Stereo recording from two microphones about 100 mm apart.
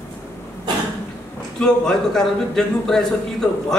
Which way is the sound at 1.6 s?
5° left (ahead or behind).